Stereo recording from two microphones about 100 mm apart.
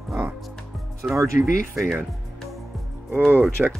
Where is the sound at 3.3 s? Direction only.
20° right (ahead or behind).